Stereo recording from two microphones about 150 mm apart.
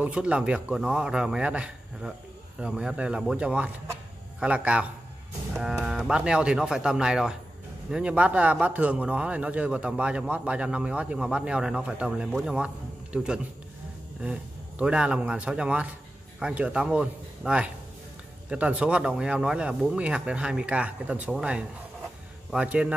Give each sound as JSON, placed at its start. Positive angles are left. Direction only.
{"t": 0.0, "sound": "a man's voice", "side_deg": -10}